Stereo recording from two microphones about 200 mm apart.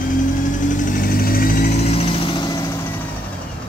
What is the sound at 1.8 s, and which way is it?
Vehicle, 30° left (ahead or behind).